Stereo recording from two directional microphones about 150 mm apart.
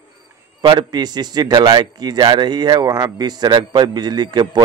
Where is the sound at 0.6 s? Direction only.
30° right (ahead or behind).